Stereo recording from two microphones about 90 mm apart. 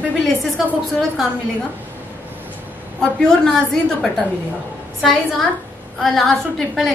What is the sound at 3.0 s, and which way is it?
A woman's voice, 5° left (ahead or behind).